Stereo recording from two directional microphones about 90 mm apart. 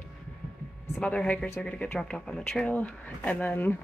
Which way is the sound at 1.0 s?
15° left (ahead or behind).